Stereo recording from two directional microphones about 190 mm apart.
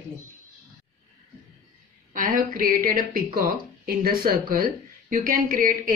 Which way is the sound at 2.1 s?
45° right (ahead or behind).